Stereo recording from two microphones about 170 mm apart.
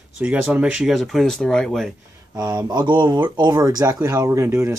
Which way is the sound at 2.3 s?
25° right (ahead or behind).